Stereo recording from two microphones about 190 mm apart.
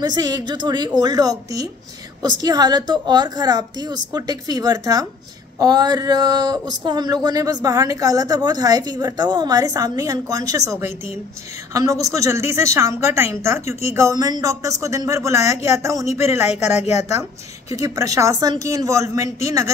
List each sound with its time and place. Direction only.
0.0 s a woman's voice: 20° right (ahead or behind)